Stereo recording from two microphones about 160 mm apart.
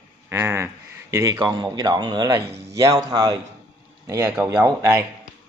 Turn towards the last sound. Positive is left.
turn(degrees=-15)  # may be behind; listen again after turning